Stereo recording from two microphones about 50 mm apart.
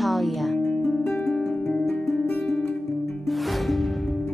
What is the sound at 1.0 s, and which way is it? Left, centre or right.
Music, centre.